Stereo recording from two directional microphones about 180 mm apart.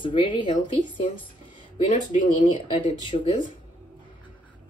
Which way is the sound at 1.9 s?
45° left (ahead or behind).